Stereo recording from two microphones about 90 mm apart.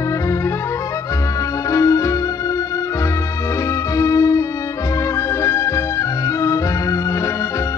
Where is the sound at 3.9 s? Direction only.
40° left (ahead or behind).